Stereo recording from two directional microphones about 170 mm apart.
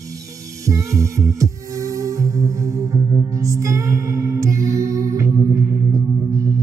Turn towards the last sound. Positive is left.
turn(degrees=-20)  # may be behind; listen again after turning